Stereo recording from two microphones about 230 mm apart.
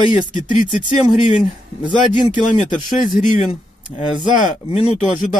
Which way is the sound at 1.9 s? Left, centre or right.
Left.